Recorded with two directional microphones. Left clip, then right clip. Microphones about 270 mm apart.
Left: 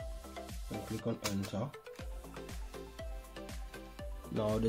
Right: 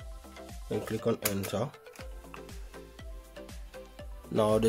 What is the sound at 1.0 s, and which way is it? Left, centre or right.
Speech, right.